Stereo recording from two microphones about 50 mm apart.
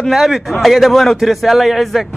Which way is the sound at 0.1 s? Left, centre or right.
Centre.